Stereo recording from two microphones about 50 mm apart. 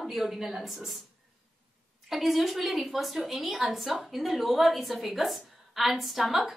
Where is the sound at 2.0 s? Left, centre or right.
Centre.